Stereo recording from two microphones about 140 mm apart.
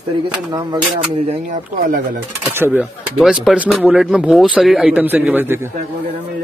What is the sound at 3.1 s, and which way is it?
A man's voice, centre (ahead or behind).